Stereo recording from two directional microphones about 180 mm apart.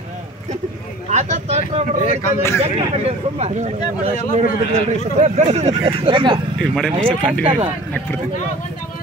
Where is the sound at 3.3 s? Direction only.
35° right (ahead or behind).